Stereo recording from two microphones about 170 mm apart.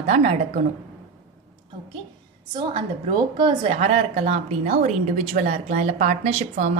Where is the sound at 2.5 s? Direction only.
25° right (ahead or behind).